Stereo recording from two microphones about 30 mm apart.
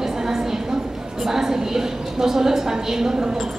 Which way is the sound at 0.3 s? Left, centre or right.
Centre.